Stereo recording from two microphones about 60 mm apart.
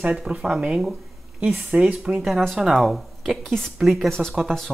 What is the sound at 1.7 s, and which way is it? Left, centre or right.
Speech, right.